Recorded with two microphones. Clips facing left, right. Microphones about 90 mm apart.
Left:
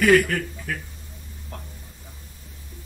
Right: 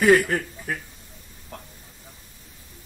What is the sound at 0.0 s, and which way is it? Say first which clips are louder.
Speech: even; 20° right (ahead or behind).